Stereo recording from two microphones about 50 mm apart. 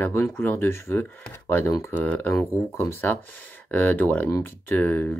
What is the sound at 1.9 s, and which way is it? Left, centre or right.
Speech, left.